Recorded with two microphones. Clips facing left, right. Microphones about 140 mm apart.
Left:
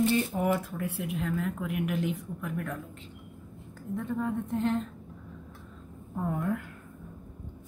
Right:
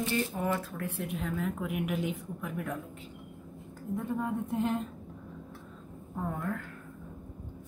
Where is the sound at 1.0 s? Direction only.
Centre (ahead or behind).